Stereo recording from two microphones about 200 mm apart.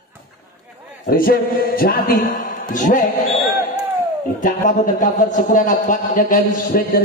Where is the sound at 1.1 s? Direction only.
50° left (ahead or behind).